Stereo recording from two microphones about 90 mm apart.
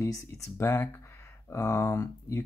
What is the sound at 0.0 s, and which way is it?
Speech, 30° left (ahead or behind).